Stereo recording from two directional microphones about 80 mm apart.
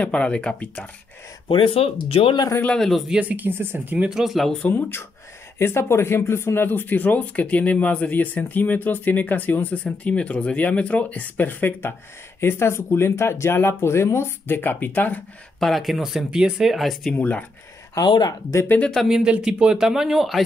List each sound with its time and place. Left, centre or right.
0.0 s speech: centre
1.5 s speech: left
2.6 s speech: centre
3.1 s speech: centre
4.1 s speech: centre
4.6 s speech: left
15.6 s speech: centre
17.2 s speech: centre
19.0 s speech: centre